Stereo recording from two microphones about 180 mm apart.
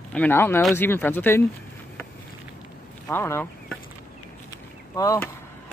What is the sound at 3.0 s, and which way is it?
Speech, 15° left (ahead or behind).